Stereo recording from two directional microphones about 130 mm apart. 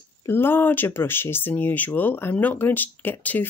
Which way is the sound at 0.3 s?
15° left (ahead or behind).